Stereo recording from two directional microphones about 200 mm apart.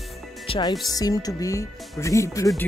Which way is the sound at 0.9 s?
20° left (ahead or behind).